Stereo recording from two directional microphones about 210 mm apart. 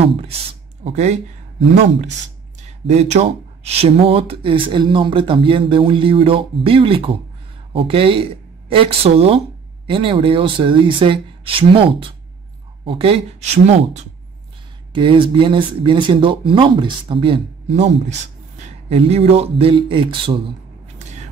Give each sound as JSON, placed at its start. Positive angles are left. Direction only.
{"t": 0.0, "sound": "speech", "side_deg": -30}
{"t": 2.9, "sound": "speech", "side_deg": -30}